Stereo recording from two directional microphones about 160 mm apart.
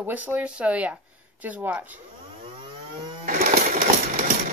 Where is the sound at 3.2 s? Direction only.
55° right (ahead or behind).